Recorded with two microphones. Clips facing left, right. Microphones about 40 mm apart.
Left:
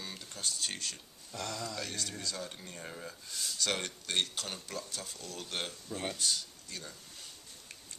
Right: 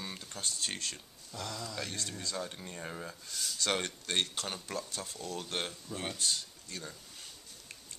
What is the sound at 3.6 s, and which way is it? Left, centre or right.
Speech, centre.